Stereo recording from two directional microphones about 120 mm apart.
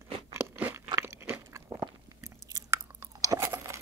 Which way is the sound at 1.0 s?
20° right (ahead or behind).